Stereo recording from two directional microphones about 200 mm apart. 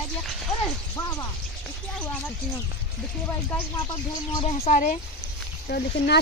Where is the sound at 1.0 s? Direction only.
15° left (ahead or behind).